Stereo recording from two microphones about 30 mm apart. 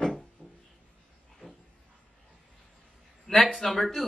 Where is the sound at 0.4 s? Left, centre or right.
Left.